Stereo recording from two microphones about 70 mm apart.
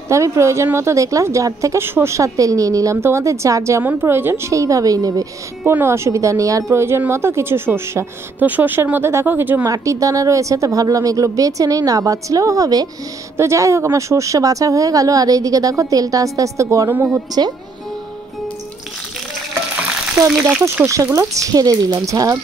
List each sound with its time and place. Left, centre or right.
0.1 s speech: right
1.8 s a woman's voice: right
2.1 s speech: right
3.0 s speech: right
4.0 s a woman's voice: right
4.5 s speech: right
5.7 s a woman's voice: right
8.4 s speech: right
9.7 s speech: right
13.4 s speech: right
16.9 s speech: right
20.6 s speech: right